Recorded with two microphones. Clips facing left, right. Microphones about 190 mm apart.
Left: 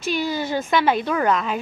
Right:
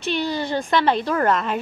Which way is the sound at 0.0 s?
Centre (ahead or behind).